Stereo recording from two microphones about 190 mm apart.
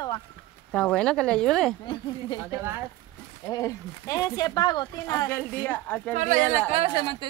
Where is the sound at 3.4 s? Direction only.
15° left (ahead or behind).